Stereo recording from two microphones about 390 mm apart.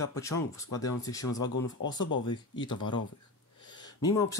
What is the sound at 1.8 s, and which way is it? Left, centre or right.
Speech, left.